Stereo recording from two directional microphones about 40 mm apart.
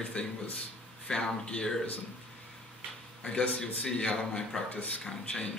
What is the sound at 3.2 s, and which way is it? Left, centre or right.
A man's voice, left.